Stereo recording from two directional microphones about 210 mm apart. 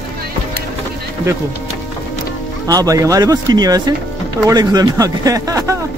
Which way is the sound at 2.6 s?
15° right (ahead or behind).